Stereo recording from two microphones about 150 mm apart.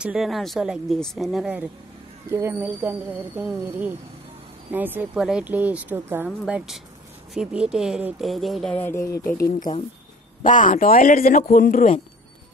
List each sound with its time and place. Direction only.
0.0 s speech: 5° right (ahead or behind)
6.4 s speech: 5° right (ahead or behind)
8.7 s speech: 15° left (ahead or behind)
9.4 s speech: 60° left (ahead or behind)